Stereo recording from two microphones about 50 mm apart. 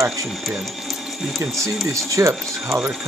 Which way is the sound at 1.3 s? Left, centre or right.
Right.